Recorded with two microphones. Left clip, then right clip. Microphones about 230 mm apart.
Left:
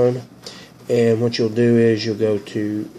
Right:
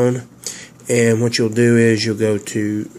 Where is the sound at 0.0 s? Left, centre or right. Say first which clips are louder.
Even; right.